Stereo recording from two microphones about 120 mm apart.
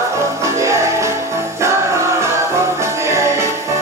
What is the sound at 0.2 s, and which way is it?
Music, 25° right (ahead or behind).